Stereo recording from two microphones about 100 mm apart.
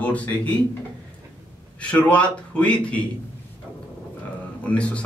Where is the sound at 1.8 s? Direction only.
10° left (ahead or behind).